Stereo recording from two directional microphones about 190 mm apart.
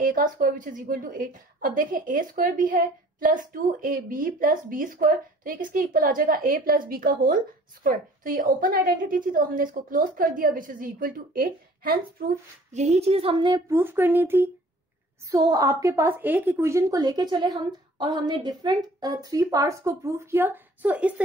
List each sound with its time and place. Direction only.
0.0 s a woman's voice: 45° right (ahead or behind)
12.7 s a woman's voice: 35° right (ahead or behind); by 21.1 s 10° right (ahead or behind)